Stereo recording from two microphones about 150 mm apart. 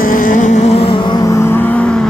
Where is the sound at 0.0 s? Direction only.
65° left (ahead or behind); by 1.1 s 35° left (ahead or behind).